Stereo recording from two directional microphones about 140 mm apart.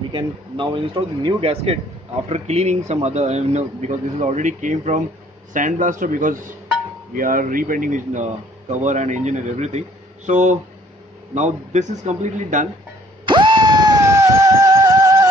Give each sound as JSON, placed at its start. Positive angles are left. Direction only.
{"t": 0.1, "sound": "a man's voice", "side_deg": -35}
{"t": 13.2, "sound": "music", "side_deg": -35}